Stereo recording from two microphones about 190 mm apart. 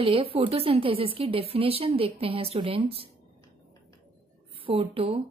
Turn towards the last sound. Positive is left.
turn(degrees=-30)  # may be behind; listen again after turning